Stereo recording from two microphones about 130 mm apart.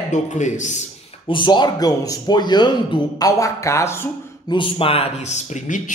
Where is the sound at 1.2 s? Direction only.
35° left (ahead or behind); by 4.0 s 20° left (ahead or behind).